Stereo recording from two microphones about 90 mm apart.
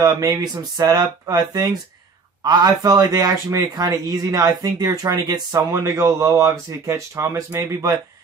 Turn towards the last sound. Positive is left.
turn(degrees=-35)  # may be behind; listen again after turning